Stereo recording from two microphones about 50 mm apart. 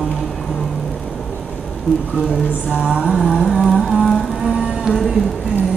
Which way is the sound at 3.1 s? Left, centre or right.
Centre.